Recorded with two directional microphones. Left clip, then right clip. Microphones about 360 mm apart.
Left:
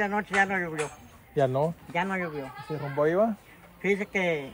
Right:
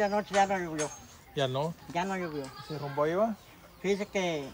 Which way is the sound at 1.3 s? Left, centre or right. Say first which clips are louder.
Left 6 dB; centre.